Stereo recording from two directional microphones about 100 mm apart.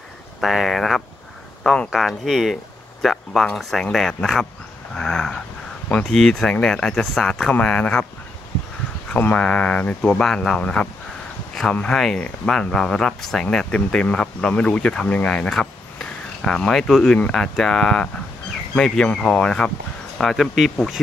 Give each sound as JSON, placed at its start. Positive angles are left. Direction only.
{"t": 0.4, "sound": "speech", "side_deg": 0}
{"t": 4.9, "sound": "a sound", "side_deg": 5}
{"t": 5.9, "sound": "speech", "side_deg": 15}
{"t": 9.1, "sound": "speech", "side_deg": 10}